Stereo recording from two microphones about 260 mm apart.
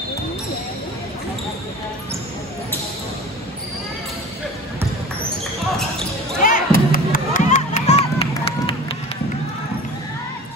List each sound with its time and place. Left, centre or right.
6.4 s music: left